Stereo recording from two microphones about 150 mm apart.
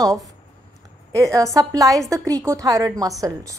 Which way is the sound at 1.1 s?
20° right (ahead or behind).